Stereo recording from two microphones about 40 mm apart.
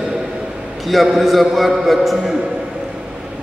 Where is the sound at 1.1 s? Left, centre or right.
Centre.